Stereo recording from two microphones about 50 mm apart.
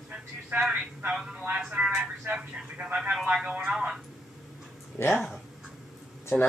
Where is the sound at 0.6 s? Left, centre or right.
Right.